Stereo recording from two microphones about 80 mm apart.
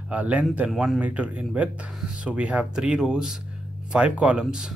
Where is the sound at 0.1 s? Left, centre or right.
Centre.